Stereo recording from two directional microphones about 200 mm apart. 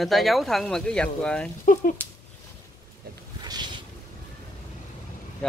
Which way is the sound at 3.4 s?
20° right (ahead or behind).